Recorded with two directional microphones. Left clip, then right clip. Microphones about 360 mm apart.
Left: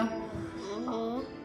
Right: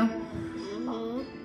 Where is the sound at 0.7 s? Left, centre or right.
Centre.